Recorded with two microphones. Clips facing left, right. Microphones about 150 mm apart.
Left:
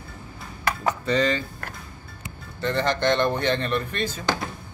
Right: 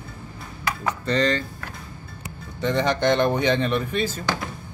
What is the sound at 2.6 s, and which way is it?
Speech, 10° right (ahead or behind).